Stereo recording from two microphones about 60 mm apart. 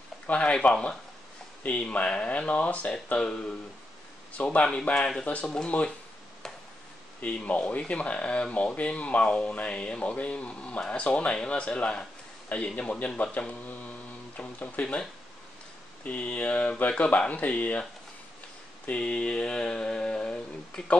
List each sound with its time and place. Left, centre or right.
0.3 s speech: centre
7.2 s speech: left
18.9 s a sound: centre